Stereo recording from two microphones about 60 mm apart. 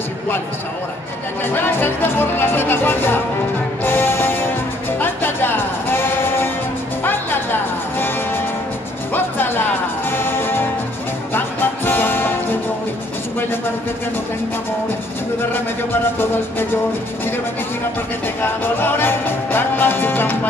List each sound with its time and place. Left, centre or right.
1.4 s speech: left
3.8 s music: left
10.0 s music: left
15.5 s speech: left
18.4 s music: left